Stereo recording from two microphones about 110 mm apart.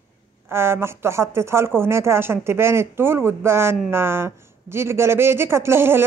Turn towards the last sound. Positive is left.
turn(degrees=-20)  # may be behind; listen again after turning